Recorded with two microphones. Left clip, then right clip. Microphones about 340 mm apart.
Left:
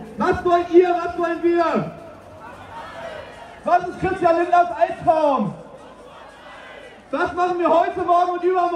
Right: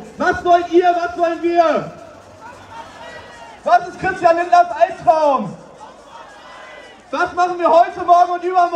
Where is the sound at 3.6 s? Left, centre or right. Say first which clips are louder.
Right 4 dB; right.